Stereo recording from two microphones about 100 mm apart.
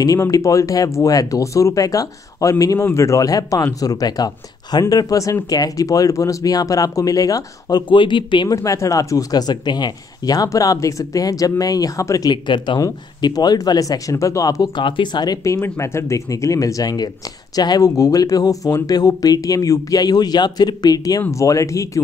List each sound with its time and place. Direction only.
0.0 s speech: 35° left (ahead or behind)
7.9 s speech: 55° left (ahead or behind)
8.5 s speech: 30° left (ahead or behind)
12.3 s speech: 50° left (ahead or behind)
14.8 s speech: 55° left (ahead or behind)
15.6 s speech: 25° left (ahead or behind)